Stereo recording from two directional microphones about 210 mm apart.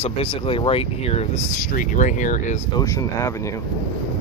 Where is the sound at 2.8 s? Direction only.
15° left (ahead or behind).